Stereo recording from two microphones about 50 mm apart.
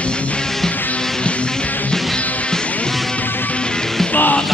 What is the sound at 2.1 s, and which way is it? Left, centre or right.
Music, left.